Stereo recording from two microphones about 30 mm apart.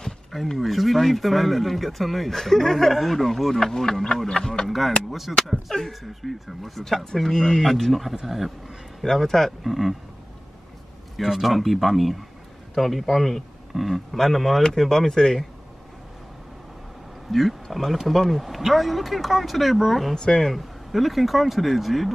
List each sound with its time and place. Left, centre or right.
0.6 s speech: centre
3.5 s speech: centre
4.6 s speech: centre
7.9 s speech: centre
9.0 s speech: centre
9.6 s speech: centre
11.2 s a man's voice: centre
14.9 s speech: centre
17.3 s speech: centre
20.2 s speech: centre
20.5 s speech: centre